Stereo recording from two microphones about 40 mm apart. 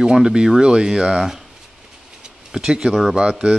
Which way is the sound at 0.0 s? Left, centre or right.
Centre.